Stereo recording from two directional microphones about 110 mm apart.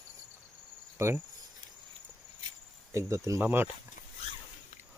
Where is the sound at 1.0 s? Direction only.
25° right (ahead or behind).